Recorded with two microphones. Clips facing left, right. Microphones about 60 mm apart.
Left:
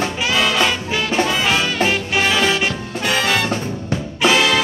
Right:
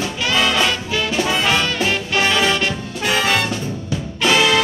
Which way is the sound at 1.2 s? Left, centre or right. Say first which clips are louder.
Even; centre.